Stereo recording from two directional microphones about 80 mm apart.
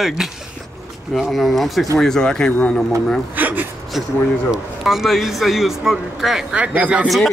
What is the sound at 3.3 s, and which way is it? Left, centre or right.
Speech, right.